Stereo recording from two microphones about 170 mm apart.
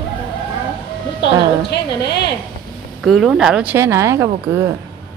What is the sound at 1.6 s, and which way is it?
Speech, 80° left.